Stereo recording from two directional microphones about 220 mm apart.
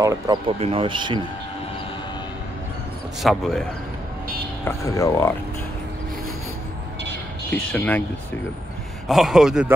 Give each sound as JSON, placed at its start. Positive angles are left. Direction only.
{"t": 0.0, "sound": "speech", "side_deg": -15}
{"t": 0.6, "sound": "speech", "side_deg": -25}
{"t": 3.2, "sound": "a man's voice", "side_deg": 0}
{"t": 4.6, "sound": "speech", "side_deg": 15}
{"t": 7.5, "sound": "speech", "side_deg": 10}
{"t": 9.0, "sound": "a man's voice", "side_deg": 0}